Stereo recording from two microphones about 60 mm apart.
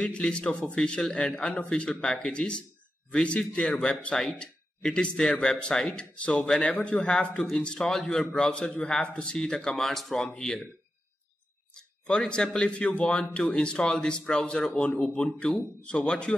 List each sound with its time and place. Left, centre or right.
0.0 s speech: centre
11.7 s speech: centre